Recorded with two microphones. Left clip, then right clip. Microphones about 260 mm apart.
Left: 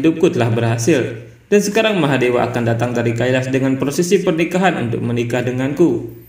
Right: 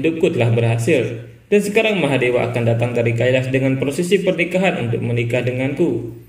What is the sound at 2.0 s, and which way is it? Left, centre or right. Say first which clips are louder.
A man's voice: left 1 dB; left.